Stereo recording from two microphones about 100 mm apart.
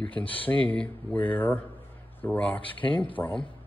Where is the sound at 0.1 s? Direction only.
65° left (ahead or behind).